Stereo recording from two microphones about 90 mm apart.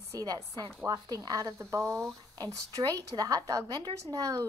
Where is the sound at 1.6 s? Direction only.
35° right (ahead or behind).